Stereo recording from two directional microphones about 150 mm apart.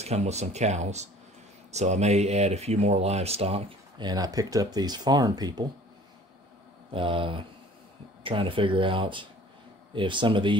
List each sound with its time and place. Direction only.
0.0 s speech: 45° right (ahead or behind)
4.0 s speech: 25° right (ahead or behind)
6.9 s speech: 35° right (ahead or behind)